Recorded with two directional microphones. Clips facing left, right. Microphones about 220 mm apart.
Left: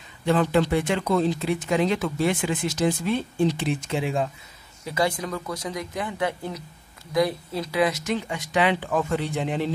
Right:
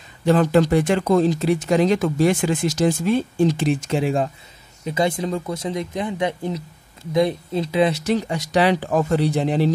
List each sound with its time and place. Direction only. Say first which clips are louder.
0.2 s speech: right 5 dB; 40° right (ahead or behind)
4.8 s speech: right 4 dB; 20° right (ahead or behind)